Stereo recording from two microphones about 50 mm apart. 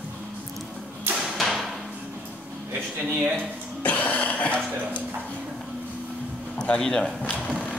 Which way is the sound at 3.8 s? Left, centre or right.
Left.